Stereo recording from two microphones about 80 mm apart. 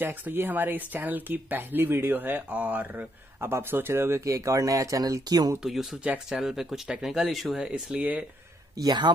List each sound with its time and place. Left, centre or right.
0.0 s speech: right
4.2 s speech: right
5.6 s speech: centre
8.7 s speech: right